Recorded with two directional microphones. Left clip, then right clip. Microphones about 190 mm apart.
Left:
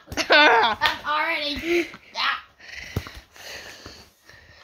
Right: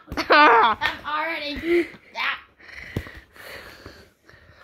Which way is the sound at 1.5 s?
Centre (ahead or behind).